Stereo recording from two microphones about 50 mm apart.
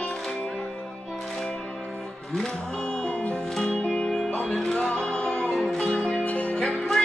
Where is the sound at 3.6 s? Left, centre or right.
Centre.